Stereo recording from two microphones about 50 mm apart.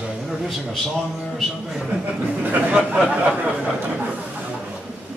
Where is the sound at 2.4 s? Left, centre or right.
Right.